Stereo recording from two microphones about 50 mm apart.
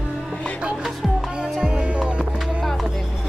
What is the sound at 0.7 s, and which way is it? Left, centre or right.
Music, centre.